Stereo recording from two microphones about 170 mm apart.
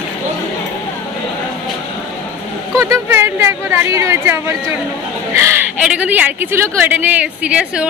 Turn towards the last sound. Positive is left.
turn(degrees=-5)  # may be behind; listen again after turning